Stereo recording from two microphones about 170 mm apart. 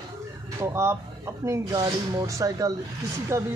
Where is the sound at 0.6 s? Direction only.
15° right (ahead or behind).